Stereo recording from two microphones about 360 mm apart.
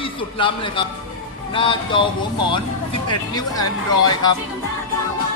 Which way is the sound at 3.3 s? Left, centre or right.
Centre.